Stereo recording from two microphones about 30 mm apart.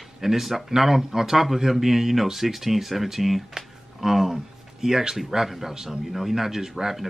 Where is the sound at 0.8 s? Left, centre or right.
Centre.